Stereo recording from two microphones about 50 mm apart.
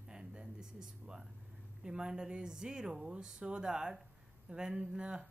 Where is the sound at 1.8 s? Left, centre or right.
Centre.